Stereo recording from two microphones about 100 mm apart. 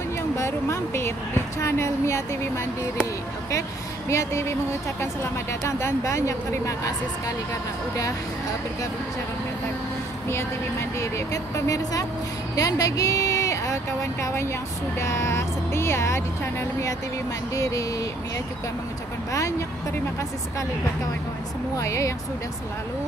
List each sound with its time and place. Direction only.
0.4 s speech: 25° left (ahead or behind)
4.1 s speech: 30° left (ahead or behind)
10.2 s a woman's voice: 25° left (ahead or behind)
17.6 s speech: 30° left (ahead or behind)
21.7 s speech: 30° left (ahead or behind)